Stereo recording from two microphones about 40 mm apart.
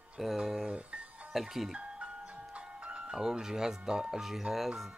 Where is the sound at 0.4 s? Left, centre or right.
Centre.